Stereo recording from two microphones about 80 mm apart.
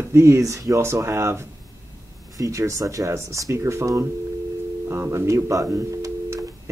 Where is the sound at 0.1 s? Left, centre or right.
Right.